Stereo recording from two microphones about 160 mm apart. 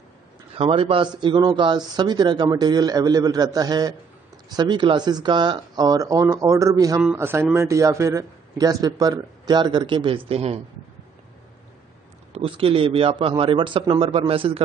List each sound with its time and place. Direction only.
0.6 s speech: 35° right (ahead or behind)
12.3 s a man's voice: 35° right (ahead or behind)